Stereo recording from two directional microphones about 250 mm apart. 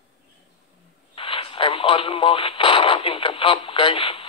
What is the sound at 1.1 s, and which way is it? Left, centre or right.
Radio, left.